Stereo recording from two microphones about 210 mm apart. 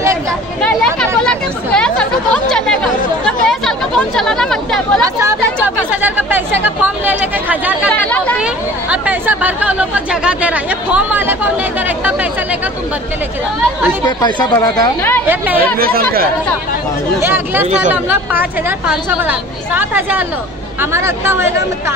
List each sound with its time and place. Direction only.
1.2 s chatter: 5° left (ahead or behind)
5.9 s chatter: 10° right (ahead or behind)
7.9 s chatter: 5° left (ahead or behind)
8.9 s speech: 10° right (ahead or behind)
12.0 s chatter: 5° right (ahead or behind)
14.0 s a woman's voice: 20° left (ahead or behind)
15.8 s speech: 45° right (ahead or behind)
17.2 s a woman's voice: 10° right (ahead or behind)